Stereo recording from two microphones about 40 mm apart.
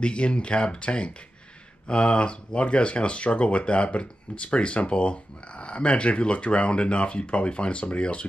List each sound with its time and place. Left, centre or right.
0.0 s speech: left